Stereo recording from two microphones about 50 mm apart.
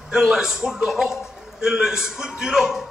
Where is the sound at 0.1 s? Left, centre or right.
Centre.